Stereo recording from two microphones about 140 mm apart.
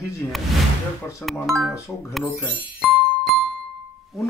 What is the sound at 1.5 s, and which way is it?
Speech, centre (ahead or behind).